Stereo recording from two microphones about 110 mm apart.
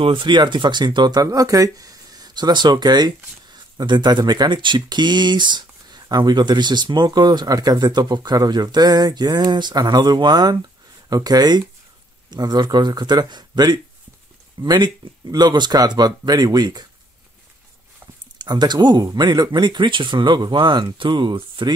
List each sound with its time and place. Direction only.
0.0 s speech: 50° right (ahead or behind)
18.4 s speech: 40° right (ahead or behind)